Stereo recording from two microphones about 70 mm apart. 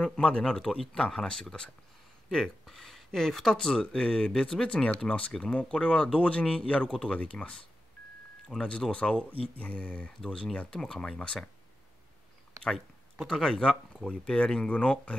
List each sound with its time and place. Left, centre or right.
0.0 s speech: centre
13.3 s speech: centre